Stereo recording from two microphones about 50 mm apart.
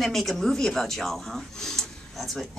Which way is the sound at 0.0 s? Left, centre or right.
Centre.